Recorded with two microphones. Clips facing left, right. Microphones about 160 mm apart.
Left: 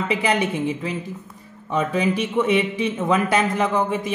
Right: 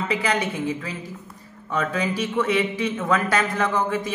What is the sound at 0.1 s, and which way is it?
A woman's voice, 20° left (ahead or behind).